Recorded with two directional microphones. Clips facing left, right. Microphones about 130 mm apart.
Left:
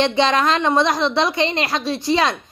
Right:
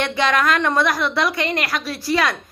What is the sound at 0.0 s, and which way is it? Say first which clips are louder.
A man's voice: left 2 dB; 25° left (ahead or behind).